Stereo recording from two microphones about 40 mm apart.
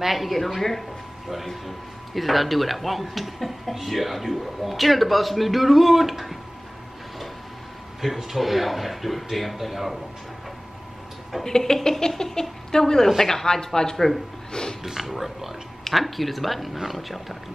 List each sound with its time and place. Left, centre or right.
0.0 s speech: centre
8.0 s speech: centre
11.4 s a woman's voice: centre
14.5 s a sound: centre
14.8 s speech: centre